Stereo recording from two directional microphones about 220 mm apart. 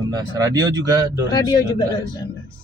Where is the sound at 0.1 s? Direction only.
15° right (ahead or behind).